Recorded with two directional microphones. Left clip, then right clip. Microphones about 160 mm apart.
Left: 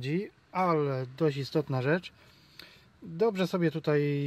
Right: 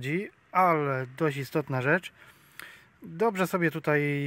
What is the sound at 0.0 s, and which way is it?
Speech, centre (ahead or behind).